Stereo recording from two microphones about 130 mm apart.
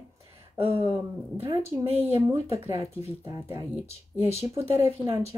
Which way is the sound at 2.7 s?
25° right (ahead or behind).